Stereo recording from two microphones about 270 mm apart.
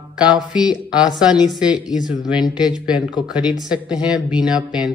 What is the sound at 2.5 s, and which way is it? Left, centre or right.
Speech, centre.